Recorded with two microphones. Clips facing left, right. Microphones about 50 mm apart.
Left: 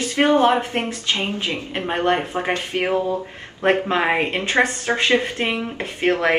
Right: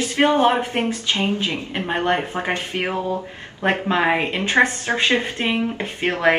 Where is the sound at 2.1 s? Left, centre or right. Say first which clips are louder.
Left 3 dB; right.